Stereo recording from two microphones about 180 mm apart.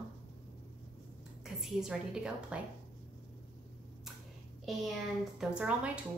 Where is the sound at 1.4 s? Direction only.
Centre (ahead or behind).